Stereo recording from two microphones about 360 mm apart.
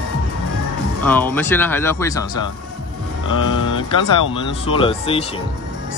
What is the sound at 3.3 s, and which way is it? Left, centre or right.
Speech, left.